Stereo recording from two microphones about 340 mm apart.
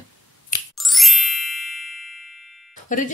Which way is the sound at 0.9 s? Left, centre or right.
Centre.